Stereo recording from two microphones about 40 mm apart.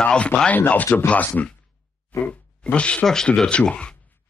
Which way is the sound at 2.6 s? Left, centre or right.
Left.